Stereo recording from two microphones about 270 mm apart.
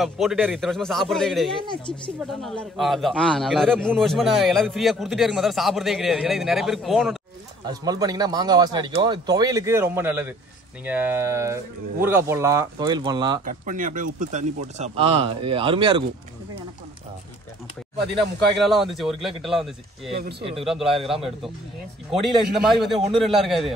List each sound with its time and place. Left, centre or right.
0.0 s a man's voice: centre
1.7 s speech: centre
2.4 s a man's voice: centre
7.6 s speech: centre
13.5 s speech: right
18.6 s a man's voice: centre